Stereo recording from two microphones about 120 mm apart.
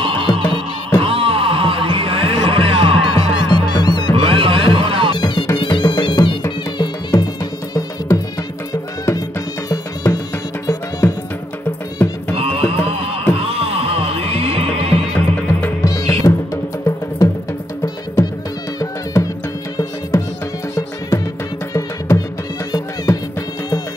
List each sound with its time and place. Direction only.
0.0 s music: 45° right (ahead or behind)
0.4 s music: 15° left (ahead or behind)
1.0 s a sound: 50° right (ahead or behind)
3.2 s music: 35° left (ahead or behind)
4.1 s music: 50° right (ahead or behind)
5.2 s music: 40° left (ahead or behind); by 8.2 s 25° left (ahead or behind)
9.7 s music: 30° left (ahead or behind)
12.4 s a sound: 55° right (ahead or behind)
13.5 s horse: 55° right (ahead or behind)
15.1 s music: 15° left (ahead or behind)
15.8 s music: 30° left (ahead or behind)
19.1 s music: 25° left (ahead or behind)
21.7 s music: 25° left (ahead or behind)